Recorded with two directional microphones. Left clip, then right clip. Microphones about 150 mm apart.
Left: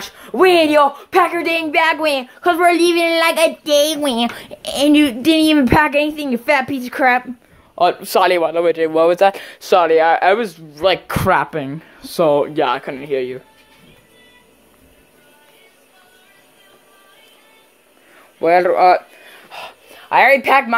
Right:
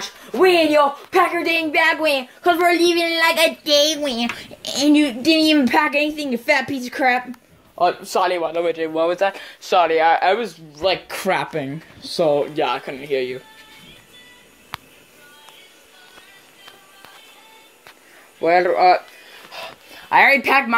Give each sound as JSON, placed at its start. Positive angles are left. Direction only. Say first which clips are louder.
{"t": 0.0, "sound": "a woman's voice", "louder": "left 3 dB", "side_deg": 20}
{"t": 8.0, "sound": "a man's voice", "louder": "left 6 dB", "side_deg": 55}
{"t": 8.5, "sound": "a man's voice", "louder": "left 6 dB", "side_deg": 40}
{"t": 8.9, "sound": "speech", "louder": "left 7 dB", "side_deg": 90}
{"t": 10.9, "sound": "speech", "louder": "left 4 dB", "side_deg": 40}
{"t": 11.2, "sound": "a woman's voice", "louder": "left 5 dB", "side_deg": 10}
{"t": 12.2, "sound": "speech", "louder": "left 4 dB", "side_deg": 25}
{"t": 12.5, "sound": "speech", "louder": "left 4 dB", "side_deg": 40}
{"t": 13.1, "sound": "speech", "louder": "left 1 dB", "side_deg": 25}
{"t": 18.4, "sound": "a woman's voice", "louder": "left 3 dB", "side_deg": 15}
{"t": 19.5, "sound": "a sound", "louder": "left 1 dB", "side_deg": 10}